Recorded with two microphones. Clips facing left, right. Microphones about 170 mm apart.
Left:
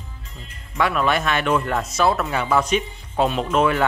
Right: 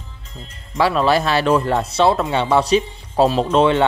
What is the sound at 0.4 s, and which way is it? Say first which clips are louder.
Speech: right 4 dB; 30° right (ahead or behind).